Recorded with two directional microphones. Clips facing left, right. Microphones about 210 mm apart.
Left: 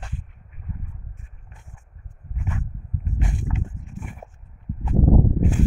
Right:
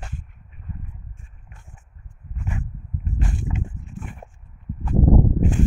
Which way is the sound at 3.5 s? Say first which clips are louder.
Right 1 dB; 15° right (ahead or behind).